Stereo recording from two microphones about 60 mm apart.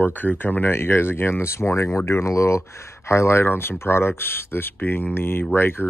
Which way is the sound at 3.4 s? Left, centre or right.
Left.